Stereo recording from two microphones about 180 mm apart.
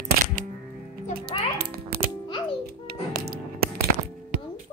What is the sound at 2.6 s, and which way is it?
Music, 60° right (ahead or behind).